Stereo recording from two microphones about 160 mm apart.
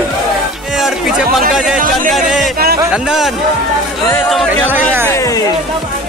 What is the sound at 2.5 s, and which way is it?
Music, 70° right (ahead or behind).